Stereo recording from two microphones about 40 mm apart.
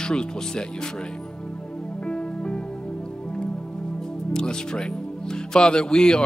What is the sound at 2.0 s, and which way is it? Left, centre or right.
Music, left.